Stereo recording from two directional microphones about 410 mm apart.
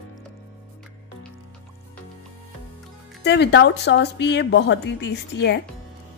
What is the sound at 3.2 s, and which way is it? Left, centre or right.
Speech, left.